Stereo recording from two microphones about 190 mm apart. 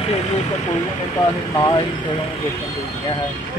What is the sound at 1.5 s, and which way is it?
Speech, 20° left (ahead or behind).